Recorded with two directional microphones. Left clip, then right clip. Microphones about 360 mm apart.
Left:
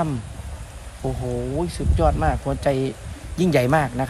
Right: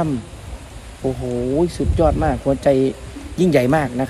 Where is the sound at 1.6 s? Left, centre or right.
Centre.